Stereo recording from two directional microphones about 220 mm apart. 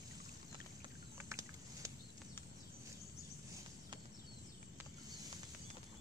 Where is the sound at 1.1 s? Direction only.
15° right (ahead or behind).